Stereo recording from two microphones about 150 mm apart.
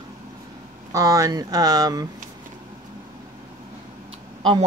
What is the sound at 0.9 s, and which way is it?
Speech, 20° right (ahead or behind).